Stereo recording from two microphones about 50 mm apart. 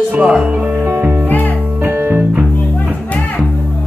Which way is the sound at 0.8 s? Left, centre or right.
Right.